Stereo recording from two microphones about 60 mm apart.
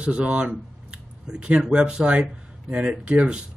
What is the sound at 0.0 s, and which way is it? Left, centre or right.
Speech, centre.